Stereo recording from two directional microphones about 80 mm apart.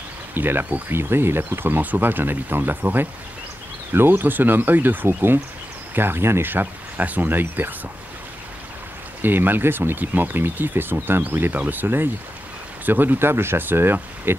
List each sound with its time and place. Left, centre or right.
0.3 s speech: right
9.2 s speech: right